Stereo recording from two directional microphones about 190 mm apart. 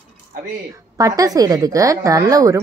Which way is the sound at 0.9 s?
20° right (ahead or behind).